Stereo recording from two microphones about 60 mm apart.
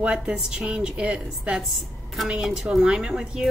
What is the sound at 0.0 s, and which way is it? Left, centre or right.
Speech, centre.